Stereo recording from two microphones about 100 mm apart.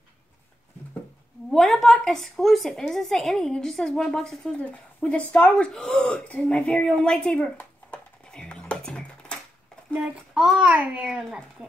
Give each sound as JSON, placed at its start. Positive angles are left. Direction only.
{"t": 1.5, "sound": "a woman's voice", "side_deg": 5}
{"t": 9.9, "sound": "child singing", "side_deg": -15}
{"t": 10.4, "sound": "a child's voice", "side_deg": -5}